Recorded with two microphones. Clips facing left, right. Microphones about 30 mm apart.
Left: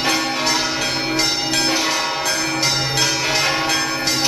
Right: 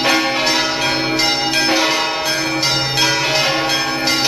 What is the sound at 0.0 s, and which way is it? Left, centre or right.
Change ringing, right.